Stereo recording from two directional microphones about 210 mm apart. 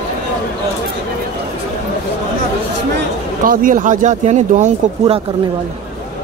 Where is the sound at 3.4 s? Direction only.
40° right (ahead or behind).